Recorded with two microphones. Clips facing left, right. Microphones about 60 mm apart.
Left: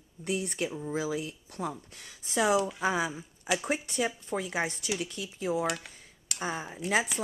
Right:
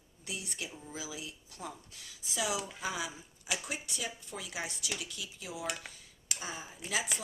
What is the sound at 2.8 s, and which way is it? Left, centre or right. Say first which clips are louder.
Speech: left 8 dB; left.